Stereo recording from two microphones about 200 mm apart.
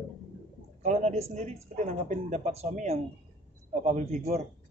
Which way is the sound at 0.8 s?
35° right (ahead or behind).